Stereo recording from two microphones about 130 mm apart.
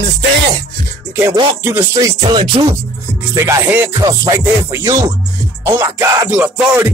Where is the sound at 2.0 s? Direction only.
40° right (ahead or behind).